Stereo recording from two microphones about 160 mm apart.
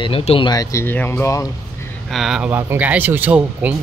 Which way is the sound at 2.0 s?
Centre (ahead or behind).